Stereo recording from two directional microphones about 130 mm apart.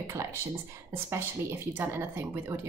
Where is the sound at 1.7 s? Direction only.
15° right (ahead or behind).